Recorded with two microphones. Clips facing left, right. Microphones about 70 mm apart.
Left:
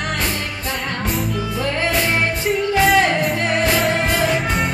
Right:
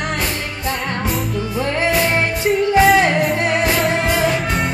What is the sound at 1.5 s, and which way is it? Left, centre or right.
Music, centre.